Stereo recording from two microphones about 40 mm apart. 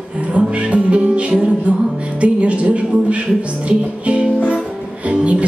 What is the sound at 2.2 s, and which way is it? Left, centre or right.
Speech, right.